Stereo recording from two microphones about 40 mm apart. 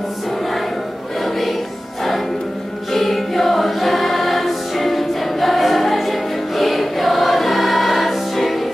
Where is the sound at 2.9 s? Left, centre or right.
Centre.